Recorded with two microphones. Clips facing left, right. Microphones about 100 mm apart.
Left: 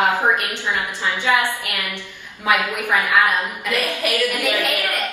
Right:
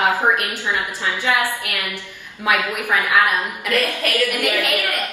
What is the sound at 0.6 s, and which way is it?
Speech, 15° right (ahead or behind).